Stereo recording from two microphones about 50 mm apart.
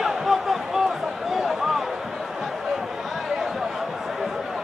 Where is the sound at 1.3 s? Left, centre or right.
Centre.